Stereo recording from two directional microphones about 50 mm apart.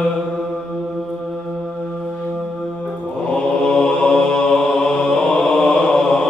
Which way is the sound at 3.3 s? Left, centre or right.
Centre.